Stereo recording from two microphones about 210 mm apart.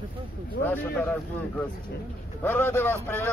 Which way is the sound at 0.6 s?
10° left (ahead or behind).